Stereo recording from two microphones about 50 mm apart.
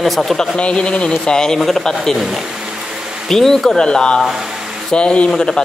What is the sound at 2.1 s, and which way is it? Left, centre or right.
A man's voice, centre.